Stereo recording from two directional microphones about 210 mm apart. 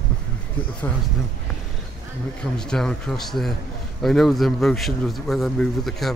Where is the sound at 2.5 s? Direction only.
5° left (ahead or behind).